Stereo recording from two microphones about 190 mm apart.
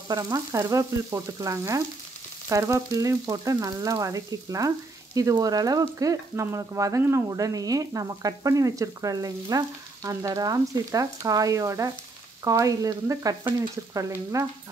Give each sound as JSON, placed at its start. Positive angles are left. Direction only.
{"t": 0.1, "sound": "frying", "side_deg": -20}